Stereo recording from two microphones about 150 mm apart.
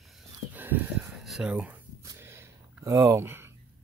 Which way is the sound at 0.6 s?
10° right (ahead or behind).